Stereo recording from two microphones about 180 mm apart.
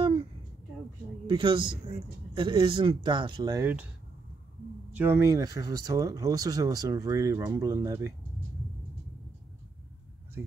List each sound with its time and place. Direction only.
0.0 s a sound: 30° right (ahead or behind)
1.2 s speech: 25° right (ahead or behind)
4.9 s speech: 10° right (ahead or behind)